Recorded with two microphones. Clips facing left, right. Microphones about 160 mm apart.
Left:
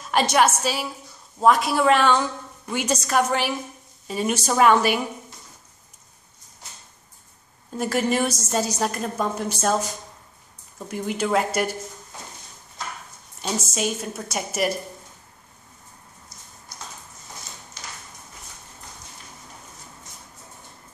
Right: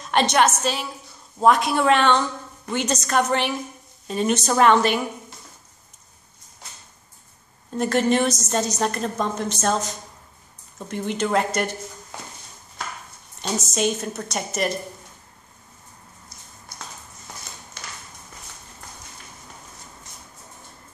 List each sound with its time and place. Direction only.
0.0 s a woman's voice: 5° left (ahead or behind)
7.7 s a woman's voice: 5° left (ahead or behind)
10.9 s a woman's voice: 5° left (ahead or behind)
13.4 s a woman's voice: 5° left (ahead or behind)
17.8 s a sound: 55° right (ahead or behind)